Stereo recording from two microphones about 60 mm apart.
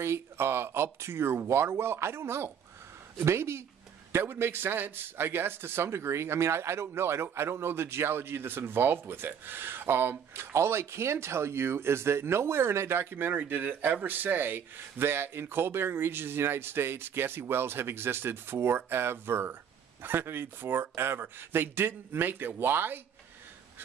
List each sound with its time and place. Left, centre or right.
0.0 s a man's voice: right